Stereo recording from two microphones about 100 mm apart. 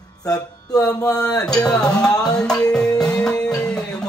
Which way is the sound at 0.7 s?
35° left (ahead or behind).